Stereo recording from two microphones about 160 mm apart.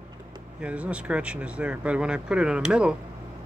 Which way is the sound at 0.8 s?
5° right (ahead or behind).